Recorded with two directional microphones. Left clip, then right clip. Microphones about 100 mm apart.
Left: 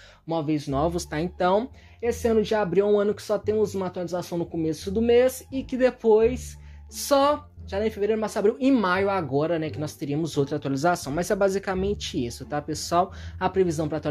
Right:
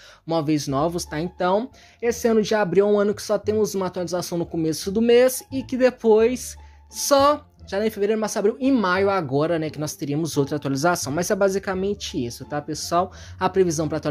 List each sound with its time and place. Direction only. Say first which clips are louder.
0.3 s speech: right 4 dB; 50° right (ahead or behind)
0.8 s speech: right 1 dB; 10° right (ahead or behind)
2.0 s speech: right 3 dB; 35° right (ahead or behind)
6.0 s speech: right 1 dB; 45° right (ahead or behind)
7.1 s speech: right 4 dB; 30° right (ahead or behind)
8.5 s speech: even; centre (ahead or behind)
8.7 s speech: right 2 dB; 25° right (ahead or behind)
9.0 s speech: right 3 dB; 45° right (ahead or behind); by 13.1 s 10° right (ahead or behind)
13.4 s speech: right 3 dB; 30° right (ahead or behind)